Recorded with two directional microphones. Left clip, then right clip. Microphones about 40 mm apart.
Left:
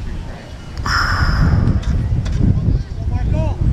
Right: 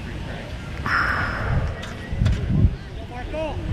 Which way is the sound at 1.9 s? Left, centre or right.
Right.